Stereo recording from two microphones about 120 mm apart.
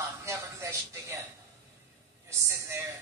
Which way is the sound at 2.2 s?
25° right (ahead or behind).